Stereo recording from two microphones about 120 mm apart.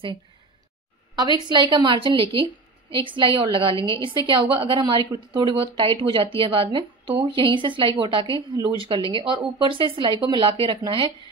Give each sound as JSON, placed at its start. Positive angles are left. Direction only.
{"t": 1.1, "sound": "a woman's voice", "side_deg": -40}